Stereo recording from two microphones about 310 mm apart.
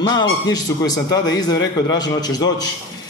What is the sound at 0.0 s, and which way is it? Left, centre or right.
A man's voice, centre.